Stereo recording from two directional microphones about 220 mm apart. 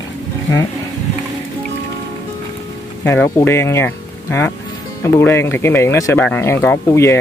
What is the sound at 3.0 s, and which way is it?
Speech, 10° left (ahead or behind).